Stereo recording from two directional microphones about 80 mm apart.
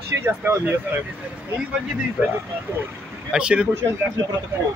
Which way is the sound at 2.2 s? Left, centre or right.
Centre.